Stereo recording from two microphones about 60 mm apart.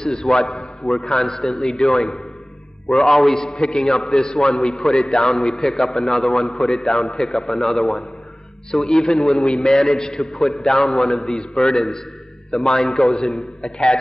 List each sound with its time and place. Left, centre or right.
0.0 s a man's voice: centre
3.5 s a man's voice: centre